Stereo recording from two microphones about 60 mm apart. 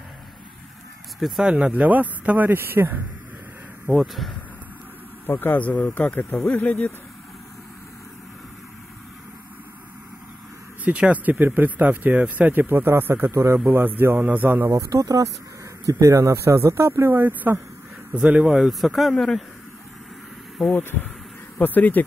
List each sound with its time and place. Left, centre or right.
1.4 s speech: centre
1.7 s speech: right
3.8 s a man's voice: centre
5.2 s a man's voice: left
10.8 s speech: right
11.3 s speech: right
13.7 s speech: right
14.7 s speech: right
15.9 s speech: right
18.1 s speech: right
18.7 s a man's voice: centre
20.6 s a man's voice: centre
21.5 s speech: left